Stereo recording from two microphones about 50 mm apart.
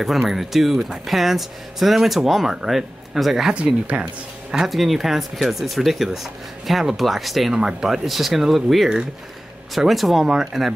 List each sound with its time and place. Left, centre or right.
0.0 s speech: centre
3.5 s speech: right
4.0 s speech: centre